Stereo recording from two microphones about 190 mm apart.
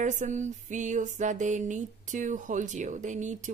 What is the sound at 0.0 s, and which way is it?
Speech, 40° right (ahead or behind).